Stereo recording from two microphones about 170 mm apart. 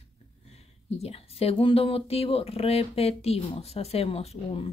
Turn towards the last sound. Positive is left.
turn(degrees=35)  # may be behind; listen again after turning